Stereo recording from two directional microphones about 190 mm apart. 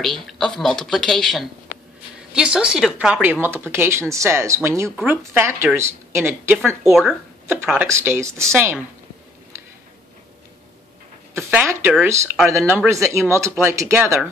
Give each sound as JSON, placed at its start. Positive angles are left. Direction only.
{"t": 0.0, "sound": "speech", "side_deg": 0}
{"t": 4.8, "sound": "speech", "side_deg": -5}
{"t": 6.8, "sound": "speech", "side_deg": 0}
{"t": 11.3, "sound": "speech", "side_deg": -10}